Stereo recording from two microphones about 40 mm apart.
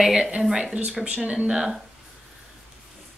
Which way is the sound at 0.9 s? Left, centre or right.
Right.